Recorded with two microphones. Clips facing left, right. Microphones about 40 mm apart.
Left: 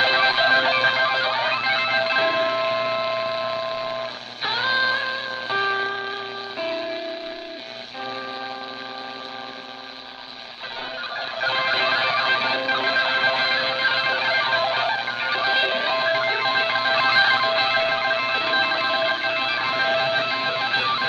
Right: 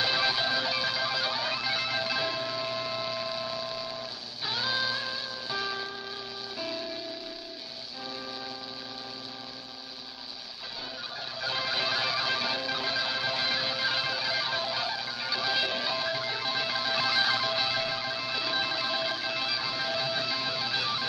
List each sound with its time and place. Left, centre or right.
0.0 s music: left
11.1 s music: left